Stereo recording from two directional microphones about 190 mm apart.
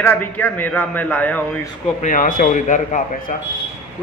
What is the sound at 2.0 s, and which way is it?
Speech, 45° left (ahead or behind).